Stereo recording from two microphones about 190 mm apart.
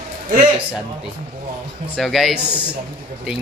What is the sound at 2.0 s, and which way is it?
Speech, centre (ahead or behind).